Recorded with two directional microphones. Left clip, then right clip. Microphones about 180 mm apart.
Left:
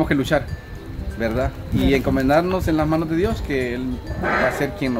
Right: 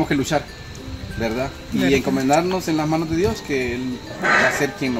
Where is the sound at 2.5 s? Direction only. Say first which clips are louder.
Left 1 dB; 10° left (ahead or behind).